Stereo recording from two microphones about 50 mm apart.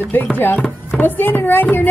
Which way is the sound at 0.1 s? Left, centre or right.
Left.